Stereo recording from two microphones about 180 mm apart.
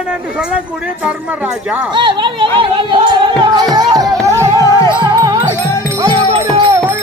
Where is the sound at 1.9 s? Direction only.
25° right (ahead or behind).